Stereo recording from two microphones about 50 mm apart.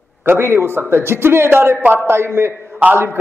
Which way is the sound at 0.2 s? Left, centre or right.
Right.